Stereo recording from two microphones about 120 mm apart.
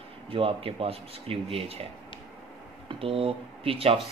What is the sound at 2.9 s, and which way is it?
A man's voice, 50° right (ahead or behind).